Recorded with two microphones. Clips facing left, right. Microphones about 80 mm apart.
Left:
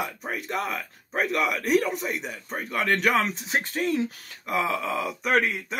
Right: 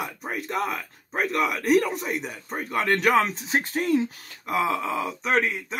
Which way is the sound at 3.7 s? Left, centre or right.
Right.